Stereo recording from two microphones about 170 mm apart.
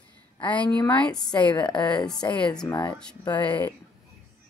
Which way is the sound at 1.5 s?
25° left (ahead or behind).